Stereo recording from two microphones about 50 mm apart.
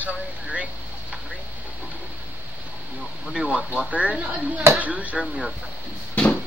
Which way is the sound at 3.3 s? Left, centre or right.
Right.